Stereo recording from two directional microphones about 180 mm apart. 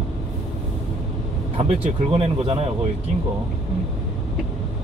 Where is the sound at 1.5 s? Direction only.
30° right (ahead or behind).